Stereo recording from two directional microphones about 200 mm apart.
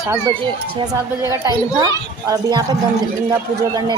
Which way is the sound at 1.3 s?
20° right (ahead or behind).